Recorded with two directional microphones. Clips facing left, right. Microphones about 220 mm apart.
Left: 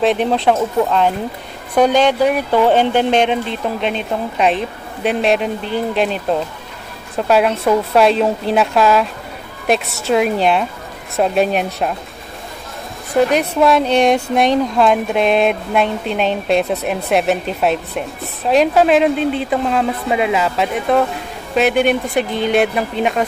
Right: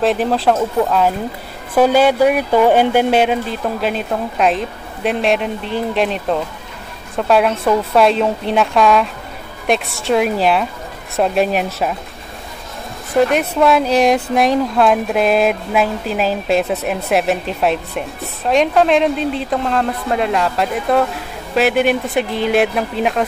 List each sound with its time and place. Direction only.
0.0 s speech: centre (ahead or behind)
13.1 s speech: centre (ahead or behind)